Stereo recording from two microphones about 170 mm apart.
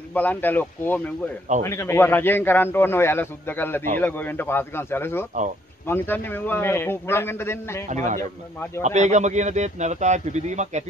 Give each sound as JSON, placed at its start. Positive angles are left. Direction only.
{"t": 0.1, "sound": "a man's voice", "side_deg": 10}
{"t": 7.9, "sound": "a man's voice", "side_deg": -45}